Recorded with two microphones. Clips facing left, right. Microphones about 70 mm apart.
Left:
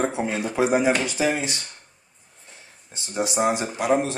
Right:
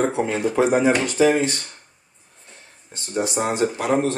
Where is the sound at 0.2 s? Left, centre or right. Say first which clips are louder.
Right 3 dB; centre.